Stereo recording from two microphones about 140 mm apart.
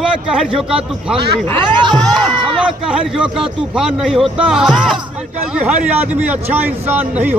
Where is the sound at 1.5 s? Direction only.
35° right (ahead or behind).